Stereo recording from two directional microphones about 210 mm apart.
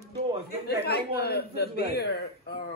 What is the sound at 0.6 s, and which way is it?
Speech, 50° left (ahead or behind).